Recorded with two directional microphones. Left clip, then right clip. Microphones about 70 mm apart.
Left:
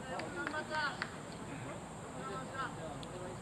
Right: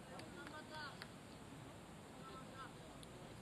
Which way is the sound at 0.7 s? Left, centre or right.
Centre.